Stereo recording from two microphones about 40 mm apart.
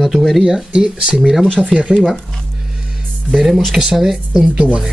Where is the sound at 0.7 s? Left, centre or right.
Right.